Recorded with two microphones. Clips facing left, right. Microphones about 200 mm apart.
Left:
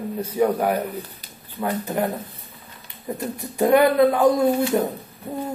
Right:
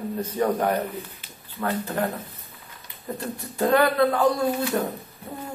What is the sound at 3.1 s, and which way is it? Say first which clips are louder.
A man's voice: left 3 dB; 15° left (ahead or behind).